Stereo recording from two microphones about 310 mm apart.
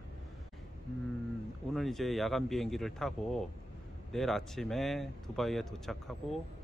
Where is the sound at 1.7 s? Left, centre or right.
Centre.